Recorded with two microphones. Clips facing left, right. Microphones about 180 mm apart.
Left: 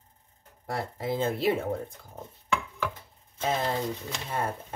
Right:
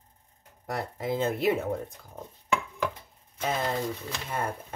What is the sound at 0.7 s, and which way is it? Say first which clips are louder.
Speech: even; 30° left (ahead or behind).